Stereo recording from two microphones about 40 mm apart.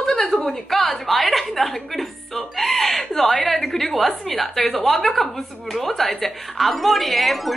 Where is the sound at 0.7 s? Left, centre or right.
Centre.